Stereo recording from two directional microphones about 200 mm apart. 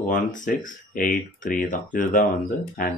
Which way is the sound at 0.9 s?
40° left (ahead or behind).